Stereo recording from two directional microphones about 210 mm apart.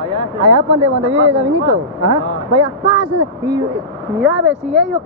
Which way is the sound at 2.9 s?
20° right (ahead or behind).